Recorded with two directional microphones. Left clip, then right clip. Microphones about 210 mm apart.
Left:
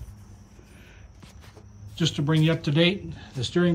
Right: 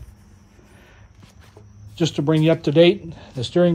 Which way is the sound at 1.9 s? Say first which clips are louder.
Right 6 dB; 25° right (ahead or behind).